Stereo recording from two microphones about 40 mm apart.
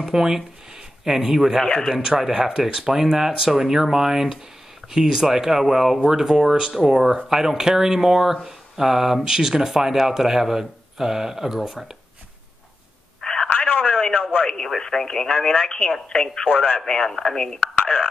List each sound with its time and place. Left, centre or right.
0.0 s speech: centre
13.2 s telephone: centre
13.5 s telephone dialing: left
14.4 s speech: centre; by 16.8 s left
16.8 s speech: centre
17.7 s a sound: left